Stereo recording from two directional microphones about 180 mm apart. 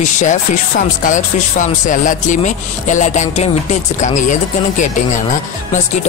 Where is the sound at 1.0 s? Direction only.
45° left (ahead or behind).